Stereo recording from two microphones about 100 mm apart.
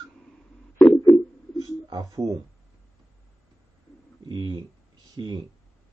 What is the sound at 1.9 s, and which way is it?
Speech, 40° right (ahead or behind).